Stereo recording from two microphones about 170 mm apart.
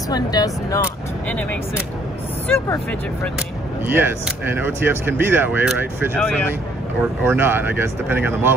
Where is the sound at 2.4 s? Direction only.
15° left (ahead or behind).